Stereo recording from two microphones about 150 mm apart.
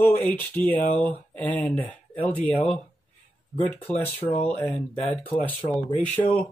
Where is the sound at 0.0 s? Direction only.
10° left (ahead or behind).